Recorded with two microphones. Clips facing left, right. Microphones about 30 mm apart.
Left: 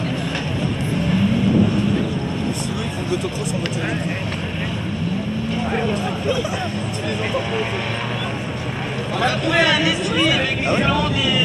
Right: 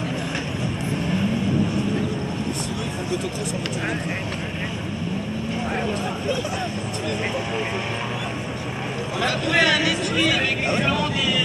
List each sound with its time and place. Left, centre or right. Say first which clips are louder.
1.0 s vehicle: left 5 dB; left
5.8 s speech: left 3 dB; centre
9.6 s speech: left 2 dB; left
11.0 s speech: left 3 dB; left